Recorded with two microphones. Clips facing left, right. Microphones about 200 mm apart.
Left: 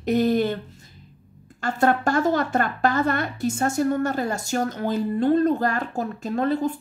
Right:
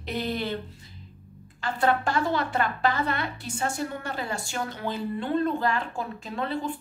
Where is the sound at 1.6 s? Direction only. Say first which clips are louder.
Left 4 dB; 45° left (ahead or behind).